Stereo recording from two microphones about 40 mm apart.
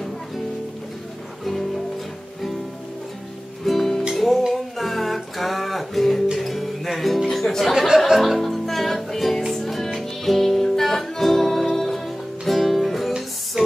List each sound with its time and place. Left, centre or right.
1.4 s music: centre
3.6 s music: centre
13.5 s music: centre